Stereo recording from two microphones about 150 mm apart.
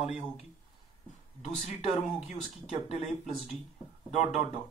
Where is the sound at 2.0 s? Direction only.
Centre (ahead or behind).